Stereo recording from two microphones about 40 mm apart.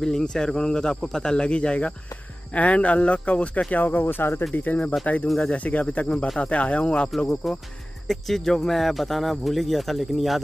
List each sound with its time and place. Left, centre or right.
0.0 s speech: centre; by 3.6 s left
3.7 s speech: left
4.2 s speech: left
5.0 s speech: left
7.2 s speech: centre